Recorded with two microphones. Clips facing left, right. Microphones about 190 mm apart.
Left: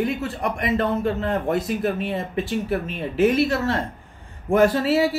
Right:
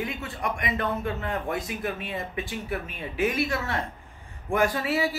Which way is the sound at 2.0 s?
65° left (ahead or behind).